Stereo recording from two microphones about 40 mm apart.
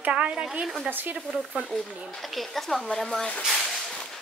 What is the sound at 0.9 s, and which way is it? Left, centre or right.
Speech, right.